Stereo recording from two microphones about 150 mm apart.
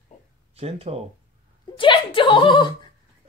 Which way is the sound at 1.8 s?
35° left (ahead or behind).